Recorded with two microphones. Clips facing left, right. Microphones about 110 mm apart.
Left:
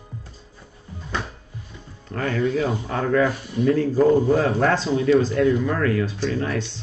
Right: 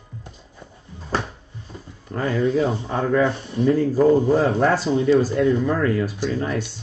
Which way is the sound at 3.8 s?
15° right (ahead or behind).